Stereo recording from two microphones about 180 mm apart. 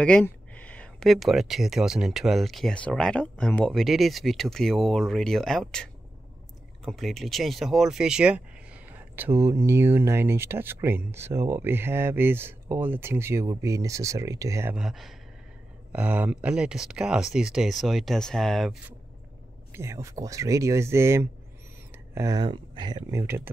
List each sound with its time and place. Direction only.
0.0 s speech: 5° left (ahead or behind); by 14.8 s 15° right (ahead or behind)
14.8 s speech: centre (ahead or behind)
19.7 s speech: 15° right (ahead or behind)